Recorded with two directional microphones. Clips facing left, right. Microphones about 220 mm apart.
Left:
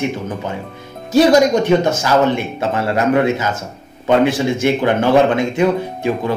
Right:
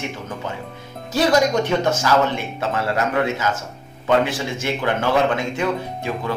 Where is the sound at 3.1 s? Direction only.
20° left (ahead or behind).